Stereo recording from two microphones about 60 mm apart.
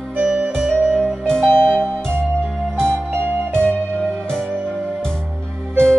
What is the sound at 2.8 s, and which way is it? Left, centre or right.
Music, right.